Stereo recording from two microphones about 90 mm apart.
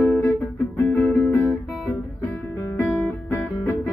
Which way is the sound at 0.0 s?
20° left (ahead or behind).